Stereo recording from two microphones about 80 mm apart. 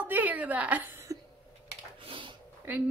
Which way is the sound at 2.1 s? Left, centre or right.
Right.